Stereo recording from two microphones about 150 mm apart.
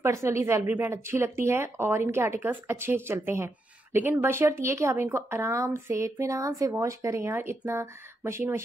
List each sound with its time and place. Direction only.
0.0 s speech: 20° right (ahead or behind)